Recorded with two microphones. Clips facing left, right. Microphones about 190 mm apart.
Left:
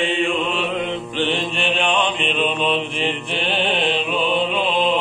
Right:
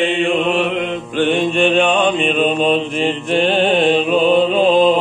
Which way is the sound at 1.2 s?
50° right (ahead or behind).